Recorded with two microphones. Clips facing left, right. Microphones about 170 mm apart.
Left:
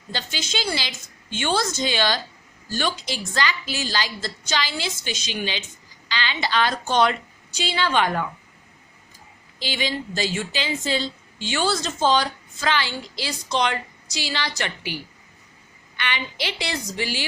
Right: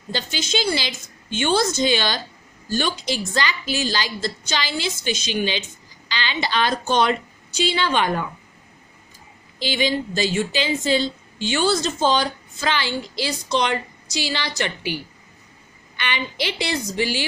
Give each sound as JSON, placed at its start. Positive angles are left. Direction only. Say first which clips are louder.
{"t": 0.1, "sound": "a woman's voice", "louder": "right 5 dB", "side_deg": -20}
{"t": 9.6, "sound": "a woman's voice", "louder": "right 5 dB", "side_deg": -20}
{"t": 16.0, "sound": "a woman's voice", "louder": "right 3 dB", "side_deg": -20}